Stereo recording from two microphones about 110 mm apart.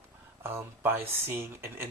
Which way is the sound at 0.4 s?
20° right (ahead or behind).